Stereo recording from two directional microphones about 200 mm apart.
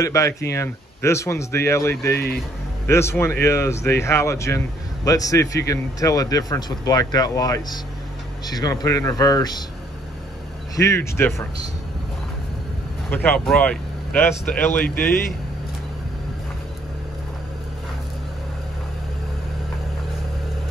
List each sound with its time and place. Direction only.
0.0 s speech: 15° left (ahead or behind)
10.8 s speech: 15° left (ahead or behind)
13.1 s speech: 10° left (ahead or behind)